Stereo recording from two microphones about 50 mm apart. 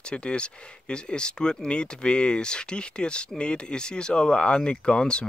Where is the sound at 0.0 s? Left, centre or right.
Left.